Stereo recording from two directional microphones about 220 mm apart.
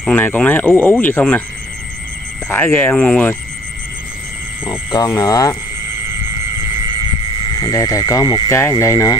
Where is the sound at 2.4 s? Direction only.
10° left (ahead or behind).